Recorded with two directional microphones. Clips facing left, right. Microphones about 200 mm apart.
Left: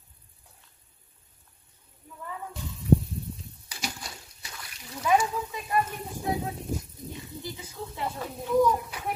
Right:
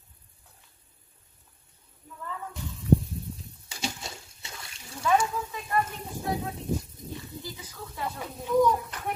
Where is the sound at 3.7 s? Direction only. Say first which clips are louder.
Right 2 dB; 25° right (ahead or behind).